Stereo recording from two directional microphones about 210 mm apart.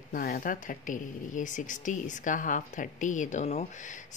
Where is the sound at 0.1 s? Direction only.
40° left (ahead or behind).